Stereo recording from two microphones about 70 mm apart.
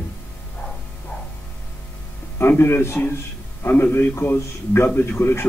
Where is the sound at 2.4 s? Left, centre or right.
Left.